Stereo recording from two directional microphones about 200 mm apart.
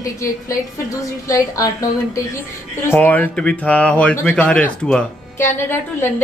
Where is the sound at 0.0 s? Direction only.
15° left (ahead or behind).